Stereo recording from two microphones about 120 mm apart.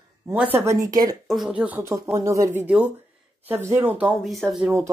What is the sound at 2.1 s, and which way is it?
Speech, 25° right (ahead or behind).